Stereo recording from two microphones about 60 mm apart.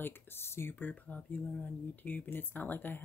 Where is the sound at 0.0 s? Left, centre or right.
Left.